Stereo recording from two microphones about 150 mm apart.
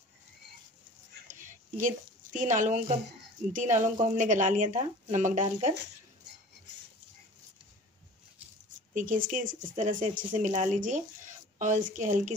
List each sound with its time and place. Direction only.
1.2 s a sound: 60° right (ahead or behind)
3.5 s speech: 55° right (ahead or behind)
8.9 s speech: 65° right (ahead or behind)